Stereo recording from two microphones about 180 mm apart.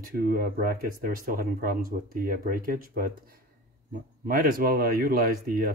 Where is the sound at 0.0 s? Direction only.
55° right (ahead or behind).